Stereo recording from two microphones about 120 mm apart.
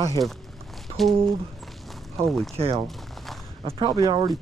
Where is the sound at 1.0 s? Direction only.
Centre (ahead or behind).